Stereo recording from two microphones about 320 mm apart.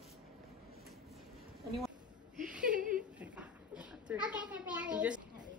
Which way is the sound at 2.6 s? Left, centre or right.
Right.